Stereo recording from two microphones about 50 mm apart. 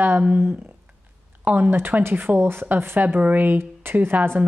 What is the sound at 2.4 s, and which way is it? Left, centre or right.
Speech, right.